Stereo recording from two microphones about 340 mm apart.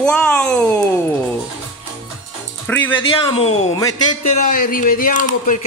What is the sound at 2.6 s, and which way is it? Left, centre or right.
Speech, centre.